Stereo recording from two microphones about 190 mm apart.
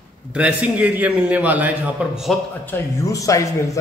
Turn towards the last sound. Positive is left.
turn(degrees=15)  # may be behind; listen again after turning